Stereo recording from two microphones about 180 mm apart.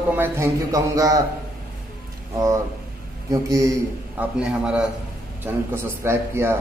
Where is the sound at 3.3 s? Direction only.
20° right (ahead or behind).